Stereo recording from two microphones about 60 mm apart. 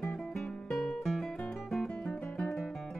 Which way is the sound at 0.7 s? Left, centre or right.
Centre.